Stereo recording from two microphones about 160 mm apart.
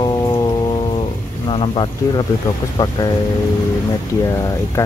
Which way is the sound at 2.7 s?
25° left (ahead or behind).